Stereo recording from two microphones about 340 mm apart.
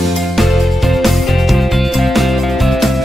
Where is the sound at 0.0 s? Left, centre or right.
Centre.